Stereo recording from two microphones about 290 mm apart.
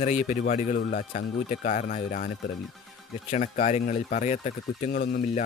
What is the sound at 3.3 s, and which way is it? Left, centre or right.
Speech, left.